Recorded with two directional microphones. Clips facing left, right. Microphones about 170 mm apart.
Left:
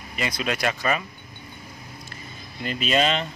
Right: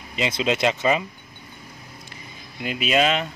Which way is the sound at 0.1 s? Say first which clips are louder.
Right 4 dB; 20° right (ahead or behind).